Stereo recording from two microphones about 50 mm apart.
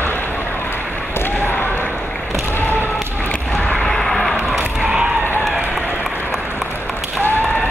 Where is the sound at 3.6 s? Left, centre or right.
Left.